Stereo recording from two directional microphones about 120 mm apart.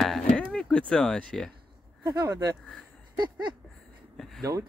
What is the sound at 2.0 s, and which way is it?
Speech, 35° right (ahead or behind).